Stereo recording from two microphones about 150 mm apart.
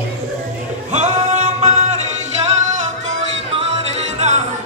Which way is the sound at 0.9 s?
50° right (ahead or behind).